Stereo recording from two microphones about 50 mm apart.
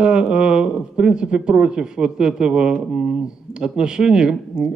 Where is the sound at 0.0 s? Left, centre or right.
Right.